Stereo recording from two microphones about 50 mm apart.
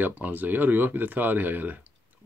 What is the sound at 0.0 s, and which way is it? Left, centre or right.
Speech, right.